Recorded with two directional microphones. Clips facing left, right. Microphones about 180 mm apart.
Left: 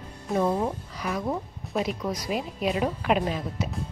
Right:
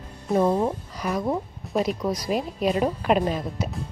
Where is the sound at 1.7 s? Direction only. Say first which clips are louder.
Right 4 dB; 35° right (ahead or behind).